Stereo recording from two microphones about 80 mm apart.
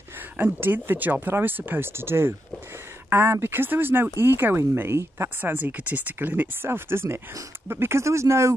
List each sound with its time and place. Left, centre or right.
0.4 s speech: right